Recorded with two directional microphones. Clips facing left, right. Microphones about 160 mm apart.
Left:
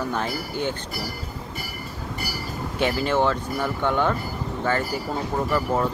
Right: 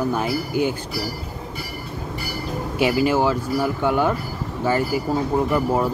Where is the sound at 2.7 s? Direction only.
10° right (ahead or behind).